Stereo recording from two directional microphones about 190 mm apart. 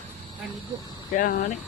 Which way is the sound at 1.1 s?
45° left (ahead or behind).